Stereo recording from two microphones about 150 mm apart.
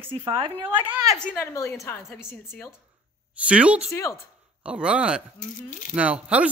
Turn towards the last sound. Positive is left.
turn(degrees=-10)  # may be behind; listen again after turning